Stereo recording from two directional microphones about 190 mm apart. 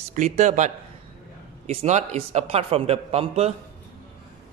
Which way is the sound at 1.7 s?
35° right (ahead or behind).